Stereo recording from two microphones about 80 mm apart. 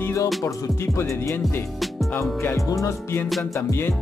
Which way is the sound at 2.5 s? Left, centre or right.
Left.